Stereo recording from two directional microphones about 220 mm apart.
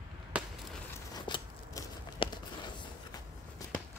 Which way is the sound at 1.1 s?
20° left (ahead or behind).